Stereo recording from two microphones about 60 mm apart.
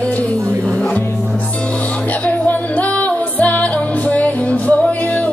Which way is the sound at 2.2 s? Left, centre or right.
Left.